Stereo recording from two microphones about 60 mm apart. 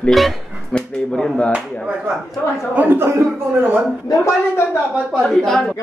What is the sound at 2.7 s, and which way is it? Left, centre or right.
Speech, right.